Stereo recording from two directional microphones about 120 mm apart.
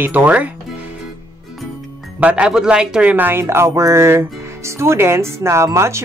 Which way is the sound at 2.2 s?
10° right (ahead or behind).